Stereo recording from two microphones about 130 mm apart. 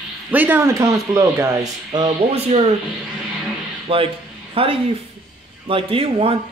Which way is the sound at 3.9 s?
45° right (ahead or behind).